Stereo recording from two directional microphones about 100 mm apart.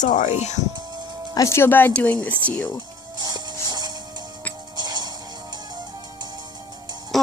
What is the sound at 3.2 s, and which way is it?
Music, 40° right (ahead or behind).